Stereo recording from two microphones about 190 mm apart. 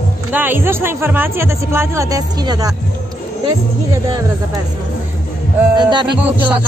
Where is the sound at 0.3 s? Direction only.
10° right (ahead or behind).